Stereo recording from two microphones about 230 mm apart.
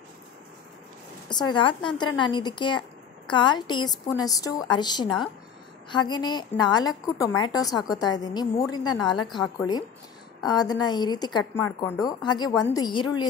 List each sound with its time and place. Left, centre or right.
1.3 s a woman's voice: centre
10.4 s a woman's voice: centre